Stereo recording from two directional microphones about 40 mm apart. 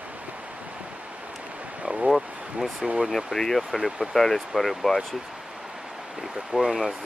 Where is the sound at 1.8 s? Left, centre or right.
Right.